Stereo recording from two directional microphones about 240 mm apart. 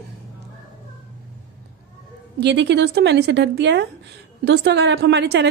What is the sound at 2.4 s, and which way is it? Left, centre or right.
A woman's voice, right.